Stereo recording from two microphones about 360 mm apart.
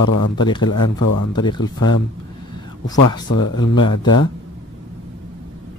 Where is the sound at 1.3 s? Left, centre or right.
Centre.